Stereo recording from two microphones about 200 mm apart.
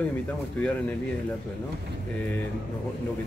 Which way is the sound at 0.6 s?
5° left (ahead or behind).